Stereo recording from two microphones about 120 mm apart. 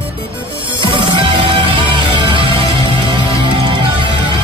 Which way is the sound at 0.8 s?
40° right (ahead or behind).